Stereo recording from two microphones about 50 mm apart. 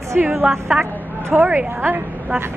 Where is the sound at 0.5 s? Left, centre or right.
Centre.